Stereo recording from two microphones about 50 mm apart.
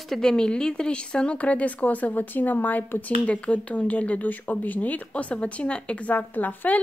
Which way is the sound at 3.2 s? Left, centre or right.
Left.